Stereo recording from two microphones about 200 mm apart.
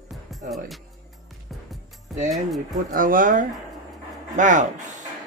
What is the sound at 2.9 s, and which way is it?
Speech, 45° right (ahead or behind).